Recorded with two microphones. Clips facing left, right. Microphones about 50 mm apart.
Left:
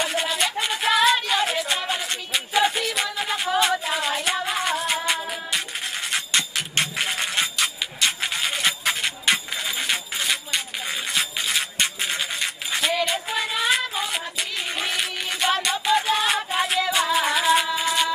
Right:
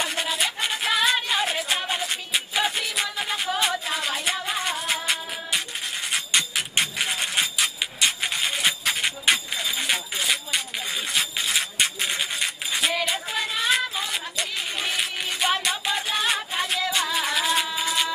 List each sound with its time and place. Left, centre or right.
0.0 s music: centre
8.2 s a sound: centre
9.0 s music: centre